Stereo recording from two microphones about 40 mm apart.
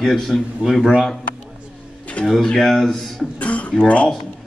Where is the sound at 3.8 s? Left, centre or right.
Left.